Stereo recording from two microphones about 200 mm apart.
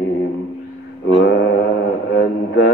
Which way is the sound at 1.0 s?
55° left (ahead or behind).